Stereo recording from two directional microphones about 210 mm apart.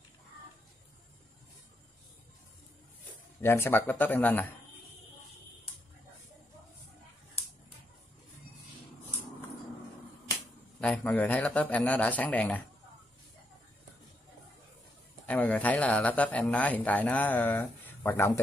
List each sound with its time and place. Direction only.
3.3 s speech: 10° left (ahead or behind)
10.8 s speech: 5° left (ahead or behind)
15.2 s speech: 5° left (ahead or behind)